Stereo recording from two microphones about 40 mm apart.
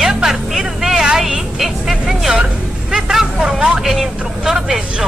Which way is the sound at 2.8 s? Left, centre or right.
Centre.